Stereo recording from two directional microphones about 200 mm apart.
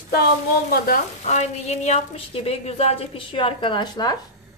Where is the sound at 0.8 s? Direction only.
40° left (ahead or behind); by 4.2 s 20° left (ahead or behind).